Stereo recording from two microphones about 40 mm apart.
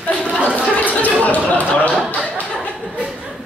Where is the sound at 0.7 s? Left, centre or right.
Left.